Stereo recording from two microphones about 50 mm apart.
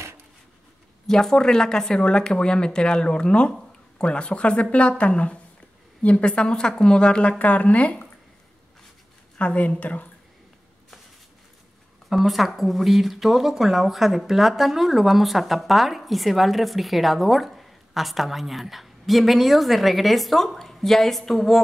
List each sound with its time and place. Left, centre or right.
1.0 s speech: centre; by 8.1 s left
9.4 s a woman's voice: left
12.1 s speech: centre